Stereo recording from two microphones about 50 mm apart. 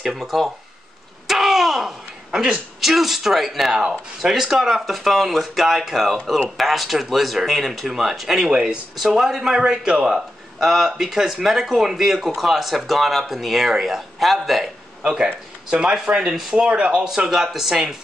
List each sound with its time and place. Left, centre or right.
0.0 s speech: centre
1.2 s a sound: centre
2.8 s speech: centre
15.7 s speech: centre
16.3 s speech: centre